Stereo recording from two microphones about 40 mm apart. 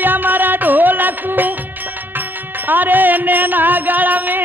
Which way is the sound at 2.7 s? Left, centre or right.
Right.